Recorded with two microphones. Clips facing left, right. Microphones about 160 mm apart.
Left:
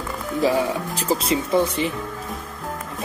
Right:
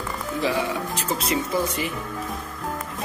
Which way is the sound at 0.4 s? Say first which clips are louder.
Left 5 dB; 40° left (ahead or behind).